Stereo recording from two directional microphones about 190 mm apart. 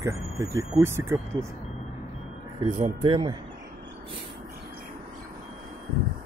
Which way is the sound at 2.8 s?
25° right (ahead or behind).